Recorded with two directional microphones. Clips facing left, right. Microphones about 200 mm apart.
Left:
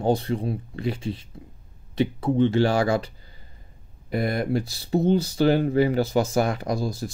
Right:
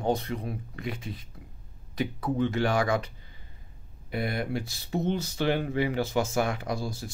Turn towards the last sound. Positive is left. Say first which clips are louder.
# left 6 dB
turn(degrees=40)  # may be behind; listen again after turning